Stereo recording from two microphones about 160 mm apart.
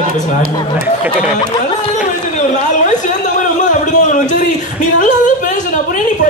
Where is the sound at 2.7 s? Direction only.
50° left (ahead or behind).